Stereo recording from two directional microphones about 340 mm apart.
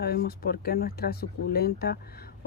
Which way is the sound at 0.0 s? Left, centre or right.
Left.